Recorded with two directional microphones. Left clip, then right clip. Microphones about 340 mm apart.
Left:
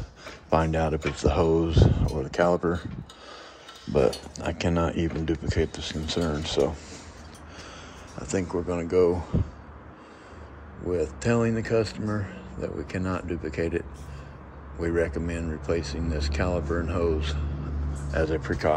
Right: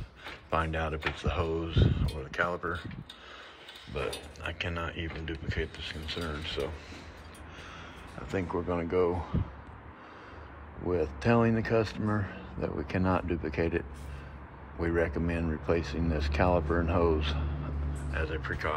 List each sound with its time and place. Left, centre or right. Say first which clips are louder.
0.5 s speech: left 7 dB; centre
3.9 s speech: left 12 dB; centre
8.5 s speech: left 3 dB; centre
10.9 s speech: left 2 dB; centre
18.1 s speech: left 8 dB; centre